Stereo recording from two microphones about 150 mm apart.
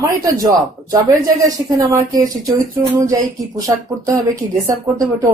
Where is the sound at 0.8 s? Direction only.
25° right (ahead or behind).